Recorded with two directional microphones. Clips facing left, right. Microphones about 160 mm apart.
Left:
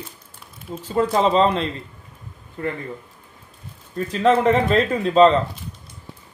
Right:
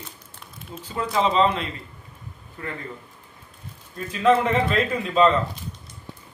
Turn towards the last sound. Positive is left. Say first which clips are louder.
# left 5 dB
turn(degrees=30)  # may be behind; listen again after turning